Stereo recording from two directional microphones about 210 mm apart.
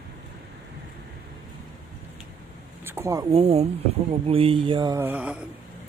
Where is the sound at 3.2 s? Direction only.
30° right (ahead or behind).